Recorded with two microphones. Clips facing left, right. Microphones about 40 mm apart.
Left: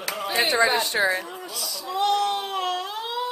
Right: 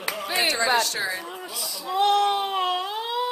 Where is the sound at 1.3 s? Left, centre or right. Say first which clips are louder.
Even; centre.